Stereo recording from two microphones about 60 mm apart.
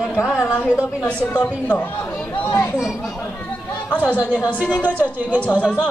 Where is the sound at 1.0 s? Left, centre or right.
Centre.